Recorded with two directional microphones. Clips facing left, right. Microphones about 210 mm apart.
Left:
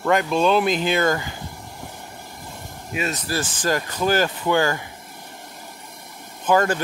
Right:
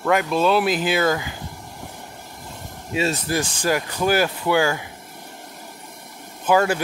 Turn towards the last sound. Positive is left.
turn(degrees=-10)  # may be behind; listen again after turning